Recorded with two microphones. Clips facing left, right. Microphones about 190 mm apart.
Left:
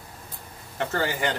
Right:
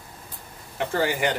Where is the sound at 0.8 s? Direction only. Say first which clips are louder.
Right 2 dB; 10° right (ahead or behind).